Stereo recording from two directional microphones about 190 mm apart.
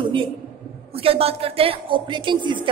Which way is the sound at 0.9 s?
30° right (ahead or behind).